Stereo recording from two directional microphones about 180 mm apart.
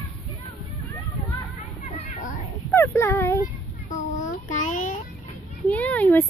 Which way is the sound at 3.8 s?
45° left (ahead or behind).